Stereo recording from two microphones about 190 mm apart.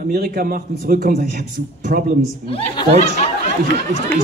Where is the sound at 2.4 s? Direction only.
30° left (ahead or behind).